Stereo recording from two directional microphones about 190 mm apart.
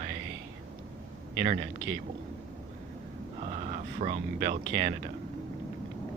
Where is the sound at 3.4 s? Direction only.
35° right (ahead or behind).